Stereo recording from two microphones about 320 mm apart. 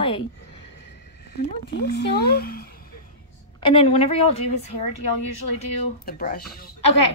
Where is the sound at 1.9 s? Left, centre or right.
Left.